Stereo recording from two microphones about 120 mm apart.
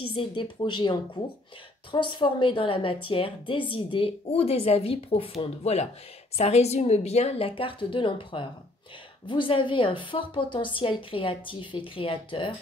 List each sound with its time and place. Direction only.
0.0 s a woman's voice: 45° left (ahead or behind)